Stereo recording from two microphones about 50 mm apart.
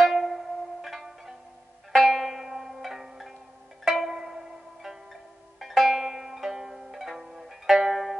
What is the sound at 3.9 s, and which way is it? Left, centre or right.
Zither, centre.